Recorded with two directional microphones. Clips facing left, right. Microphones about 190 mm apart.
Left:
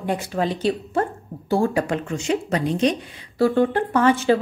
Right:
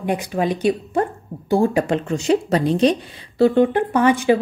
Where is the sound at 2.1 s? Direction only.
35° right (ahead or behind); by 4.4 s 15° right (ahead or behind).